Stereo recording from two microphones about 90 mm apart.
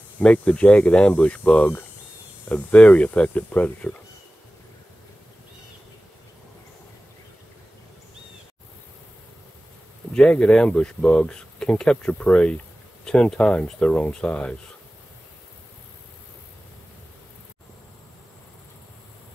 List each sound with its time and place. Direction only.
0.2 s speech: 15° left (ahead or behind)
10.1 s speech: 10° left (ahead or behind)